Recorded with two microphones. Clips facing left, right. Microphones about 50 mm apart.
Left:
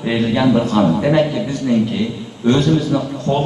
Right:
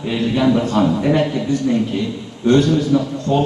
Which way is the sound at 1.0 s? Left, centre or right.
Left.